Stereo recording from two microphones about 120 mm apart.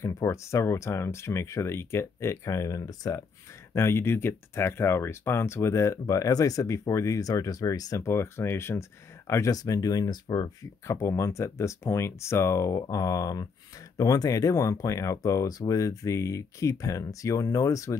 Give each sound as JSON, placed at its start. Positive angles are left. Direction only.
{"t": 0.0, "sound": "speech", "side_deg": 25}